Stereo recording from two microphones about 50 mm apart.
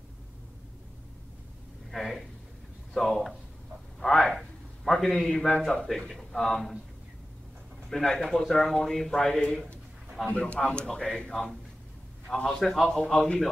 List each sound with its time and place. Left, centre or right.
1.9 s a man's voice: centre
4.0 s a sound: centre
7.9 s a man's voice: centre